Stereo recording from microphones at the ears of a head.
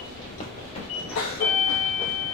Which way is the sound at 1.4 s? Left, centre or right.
Left.